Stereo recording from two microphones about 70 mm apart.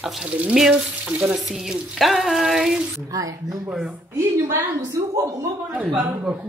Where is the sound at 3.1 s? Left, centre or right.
Right.